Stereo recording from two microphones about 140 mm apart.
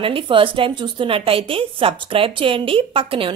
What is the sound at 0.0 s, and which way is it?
A woman's voice, 40° right (ahead or behind).